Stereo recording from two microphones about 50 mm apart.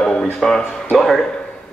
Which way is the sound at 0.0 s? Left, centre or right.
Centre.